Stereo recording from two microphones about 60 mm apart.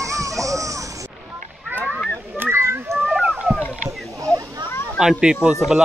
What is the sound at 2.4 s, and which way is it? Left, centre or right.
Children playing, right.